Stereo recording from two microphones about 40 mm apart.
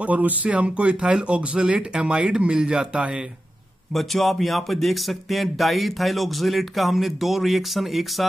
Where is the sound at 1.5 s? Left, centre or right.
Centre.